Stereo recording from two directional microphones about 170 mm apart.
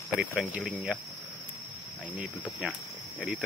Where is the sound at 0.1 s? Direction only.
5° right (ahead or behind).